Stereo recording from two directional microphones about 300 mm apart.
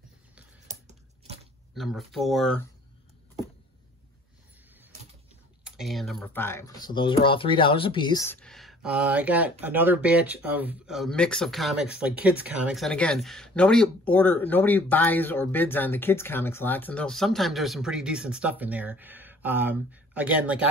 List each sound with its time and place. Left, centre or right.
0.7 s a sound: right
1.8 s speech: centre
5.6 s speech: centre